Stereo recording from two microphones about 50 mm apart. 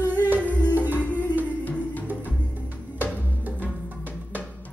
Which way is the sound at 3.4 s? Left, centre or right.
Right.